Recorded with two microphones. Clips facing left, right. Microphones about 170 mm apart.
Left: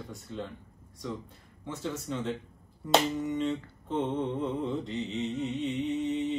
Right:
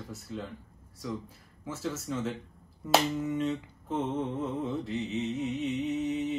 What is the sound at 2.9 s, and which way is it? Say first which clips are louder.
Mantra: even; 5° right (ahead or behind).